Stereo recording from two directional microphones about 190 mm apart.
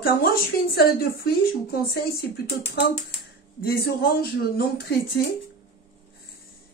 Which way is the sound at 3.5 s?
50° left (ahead or behind).